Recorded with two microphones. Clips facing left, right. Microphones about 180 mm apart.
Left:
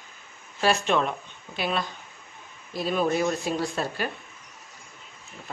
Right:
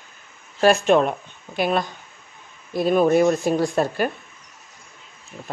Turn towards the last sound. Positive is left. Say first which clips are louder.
# right 8 dB
turn(degrees=-50)  # may be behind; listen again after turning